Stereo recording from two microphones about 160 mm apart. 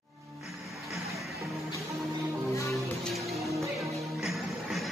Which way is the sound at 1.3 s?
20° right (ahead or behind).